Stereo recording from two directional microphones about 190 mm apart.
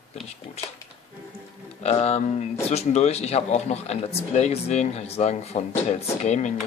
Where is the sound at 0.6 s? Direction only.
35° left (ahead or behind).